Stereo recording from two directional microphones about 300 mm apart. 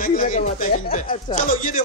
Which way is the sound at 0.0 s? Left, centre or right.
Left.